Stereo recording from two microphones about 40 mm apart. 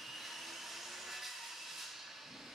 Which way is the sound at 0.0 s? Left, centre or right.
Centre.